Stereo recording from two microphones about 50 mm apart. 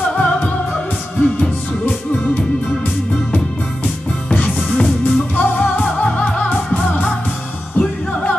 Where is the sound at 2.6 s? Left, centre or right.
Left.